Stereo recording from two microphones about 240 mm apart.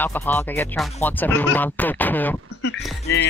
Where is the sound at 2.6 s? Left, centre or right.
Left.